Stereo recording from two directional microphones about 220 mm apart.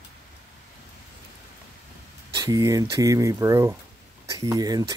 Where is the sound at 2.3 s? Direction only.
15° right (ahead or behind).